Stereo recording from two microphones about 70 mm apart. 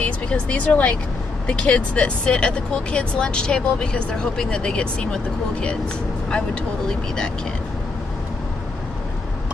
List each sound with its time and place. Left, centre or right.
0.0 s speech: centre